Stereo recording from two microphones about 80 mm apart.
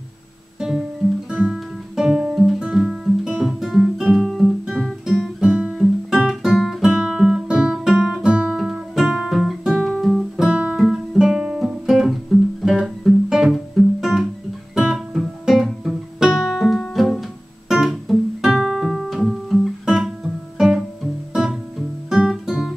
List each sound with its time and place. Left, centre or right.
0.6 s guitar: centre
10.5 s guitar: centre
10.8 s guitar: centre
12.6 s music: centre
13.7 s guitar: centre
17.6 s music: centre
22.1 s guitar: centre